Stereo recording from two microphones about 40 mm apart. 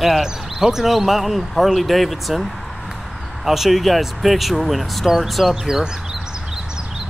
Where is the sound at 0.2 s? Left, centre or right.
Centre.